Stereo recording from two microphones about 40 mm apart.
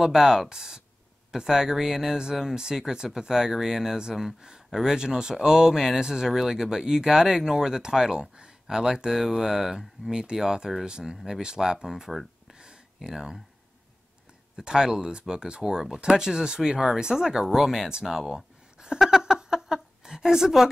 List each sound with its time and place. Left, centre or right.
0.0 s speech: centre
4.9 s speech: centre
12.5 s a sound: right
13.1 s speech: centre
14.6 s speech: centre
18.3 s a sound: centre